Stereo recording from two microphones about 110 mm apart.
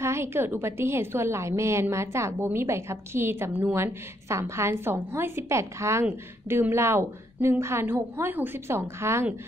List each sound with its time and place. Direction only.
0.0 s a woman's voice: 25° right (ahead or behind)